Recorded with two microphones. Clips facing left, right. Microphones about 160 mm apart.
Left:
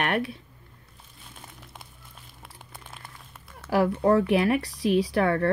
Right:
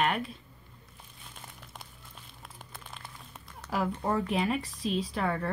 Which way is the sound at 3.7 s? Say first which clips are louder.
Left 9 dB; 70° left (ahead or behind).